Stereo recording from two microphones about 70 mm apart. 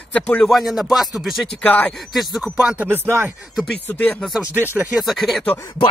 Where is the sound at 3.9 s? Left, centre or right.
Centre.